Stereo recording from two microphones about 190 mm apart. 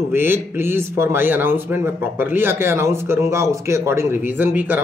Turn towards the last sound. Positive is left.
turn(degrees=-10)  # may be behind; listen again after turning